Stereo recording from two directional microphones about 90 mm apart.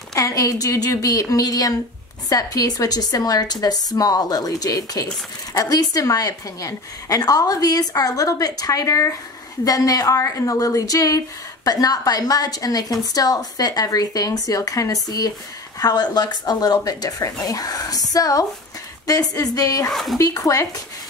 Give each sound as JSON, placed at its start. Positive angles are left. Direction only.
{"t": 0.1, "sound": "a woman's voice", "side_deg": 40}
{"t": 19.9, "sound": "speech", "side_deg": 0}
{"t": 20.2, "sound": "a woman's voice", "side_deg": 35}